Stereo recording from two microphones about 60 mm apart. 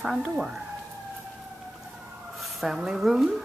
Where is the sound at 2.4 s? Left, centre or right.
Centre.